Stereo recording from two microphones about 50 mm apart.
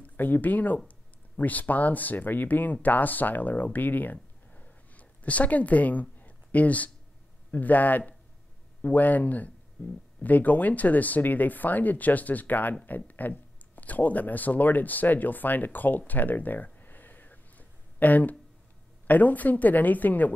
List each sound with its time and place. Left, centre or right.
0.0 s speech: left
16.1 s a sound: left
19.0 s speech: left